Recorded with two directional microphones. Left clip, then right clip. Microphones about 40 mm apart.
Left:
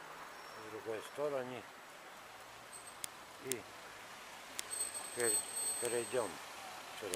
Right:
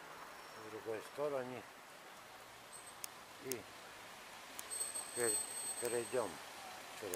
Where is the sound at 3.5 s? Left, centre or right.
Left.